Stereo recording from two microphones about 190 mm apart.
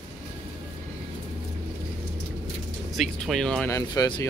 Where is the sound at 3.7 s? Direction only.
20° left (ahead or behind).